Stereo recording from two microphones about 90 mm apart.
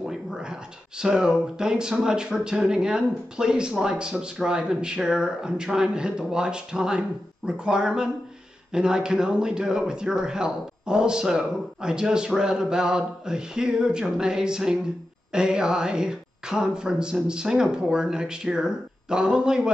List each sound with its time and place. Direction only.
0.0 s speech: 10° right (ahead or behind)